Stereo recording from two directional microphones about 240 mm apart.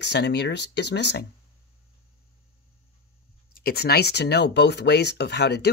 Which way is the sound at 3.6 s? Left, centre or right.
Left.